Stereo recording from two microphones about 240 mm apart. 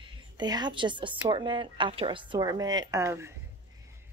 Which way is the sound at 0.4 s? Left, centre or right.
Centre.